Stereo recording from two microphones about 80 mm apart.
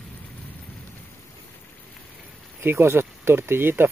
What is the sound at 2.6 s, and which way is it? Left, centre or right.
Speech, right.